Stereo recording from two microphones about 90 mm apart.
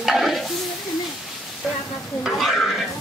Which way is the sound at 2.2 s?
Centre (ahead or behind).